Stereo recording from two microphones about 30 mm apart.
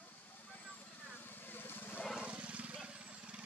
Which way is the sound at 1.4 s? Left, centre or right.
Left.